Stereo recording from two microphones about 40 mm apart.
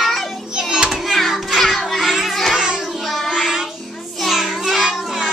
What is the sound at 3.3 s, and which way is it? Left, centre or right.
Child singing, centre.